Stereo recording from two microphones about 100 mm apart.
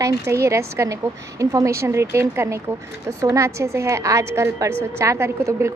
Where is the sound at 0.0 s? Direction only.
30° right (ahead or behind).